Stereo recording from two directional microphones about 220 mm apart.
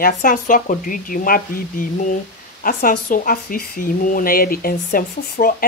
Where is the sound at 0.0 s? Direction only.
40° left (ahead or behind).